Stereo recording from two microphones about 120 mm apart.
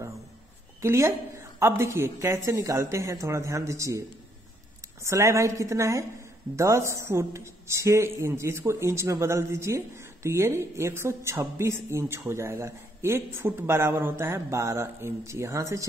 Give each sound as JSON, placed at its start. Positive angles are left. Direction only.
{"t": 0.7, "sound": "speech", "side_deg": -25}
{"t": 5.0, "sound": "speech", "side_deg": -25}